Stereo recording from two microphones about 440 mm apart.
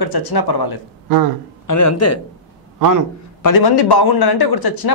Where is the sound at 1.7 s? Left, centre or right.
Left.